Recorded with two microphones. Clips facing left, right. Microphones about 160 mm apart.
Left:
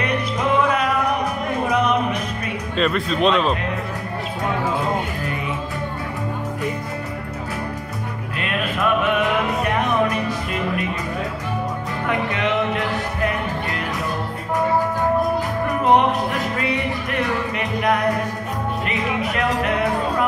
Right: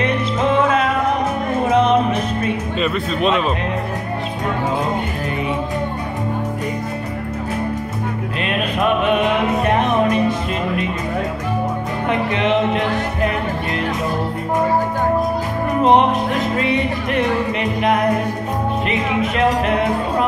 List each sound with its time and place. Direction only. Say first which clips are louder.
0.0 s music: right 4 dB; 25° right (ahead or behind)
2.8 s speech: left 2 dB; centre (ahead or behind)
8.4 s music: right 3 dB; 20° right (ahead or behind)
12.1 s music: right 4 dB; 20° right (ahead or behind)
15.8 s music: right 3 dB; 20° right (ahead or behind)